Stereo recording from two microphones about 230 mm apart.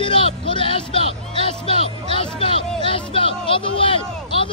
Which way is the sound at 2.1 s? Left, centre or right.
Left.